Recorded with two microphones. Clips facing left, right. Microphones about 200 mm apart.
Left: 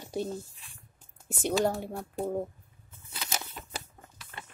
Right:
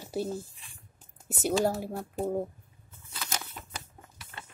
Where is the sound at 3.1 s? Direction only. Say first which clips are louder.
Left 1 dB; 25° left (ahead or behind).